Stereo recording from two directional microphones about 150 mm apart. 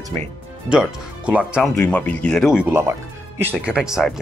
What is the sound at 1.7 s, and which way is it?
Speech, 10° left (ahead or behind).